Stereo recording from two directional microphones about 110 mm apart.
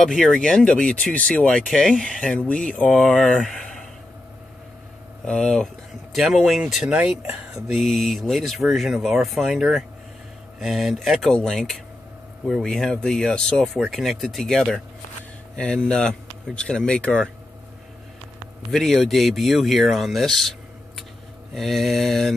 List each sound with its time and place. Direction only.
0.0 s speech: 5° left (ahead or behind)
5.2 s speech: 5° left (ahead or behind)
18.7 s speech: centre (ahead or behind)